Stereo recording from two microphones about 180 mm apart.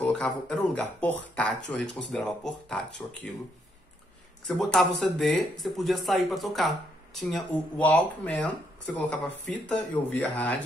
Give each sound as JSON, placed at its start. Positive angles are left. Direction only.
{"t": 0.0, "sound": "speech", "side_deg": 5}
{"t": 4.5, "sound": "speech", "side_deg": 5}